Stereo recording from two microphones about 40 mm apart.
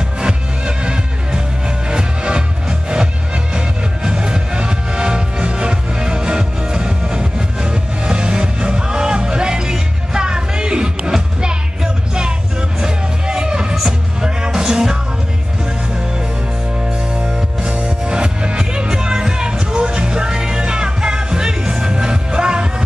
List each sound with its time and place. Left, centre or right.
0.2 s music: right
3.5 s music: right
17.2 s music: right